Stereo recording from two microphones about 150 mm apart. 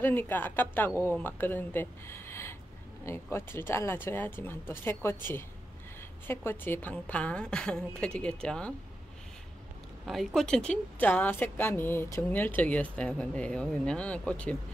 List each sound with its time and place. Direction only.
0.0 s speech: 15° left (ahead or behind)
10.0 s speech: centre (ahead or behind)